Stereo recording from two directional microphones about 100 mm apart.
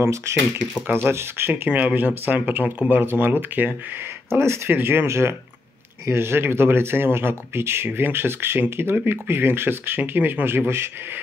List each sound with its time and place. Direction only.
0.0 s speech: 30° right (ahead or behind)